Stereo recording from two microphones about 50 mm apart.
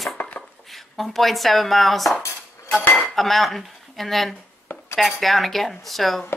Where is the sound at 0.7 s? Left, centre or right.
Centre.